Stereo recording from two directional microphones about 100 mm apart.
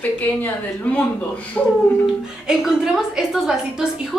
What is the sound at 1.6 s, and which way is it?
A woman's voice, 5° left (ahead or behind).